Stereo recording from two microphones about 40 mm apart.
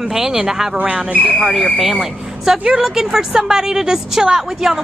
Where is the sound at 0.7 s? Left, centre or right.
Right.